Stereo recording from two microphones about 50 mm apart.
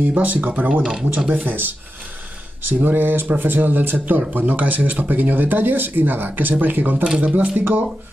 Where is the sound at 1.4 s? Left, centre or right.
Right.